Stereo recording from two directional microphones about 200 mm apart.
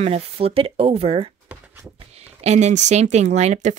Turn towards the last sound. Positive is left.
turn(degrees=-35)  # may be behind; listen again after turning